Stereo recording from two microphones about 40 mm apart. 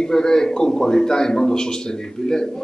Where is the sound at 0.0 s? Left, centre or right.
Centre.